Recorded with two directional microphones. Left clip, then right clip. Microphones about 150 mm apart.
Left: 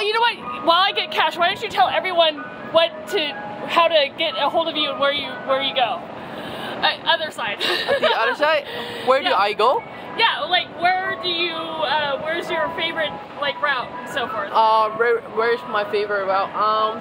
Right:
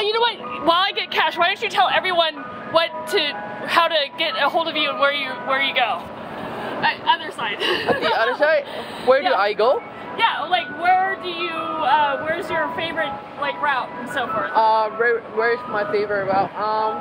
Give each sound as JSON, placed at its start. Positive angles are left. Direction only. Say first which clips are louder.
{"t": 0.1, "sound": "a sound", "louder": "left 3 dB", "side_deg": 30}
{"t": 0.7, "sound": "a woman's voice", "louder": "left 1 dB", "side_deg": 0}
{"t": 6.8, "sound": "speech", "louder": "even", "side_deg": 55}
{"t": 8.0, "sound": "speech", "louder": "left 3 dB", "side_deg": -10}
{"t": 8.4, "sound": "a woman's voice", "louder": "right 1 dB", "side_deg": 0}
{"t": 10.1, "sound": "speech", "louder": "left 1 dB", "side_deg": 30}
{"t": 10.8, "sound": "speech", "louder": "right 2 dB", "side_deg": 15}